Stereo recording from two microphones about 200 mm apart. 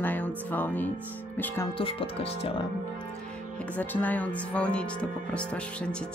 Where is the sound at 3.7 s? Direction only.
10° left (ahead or behind).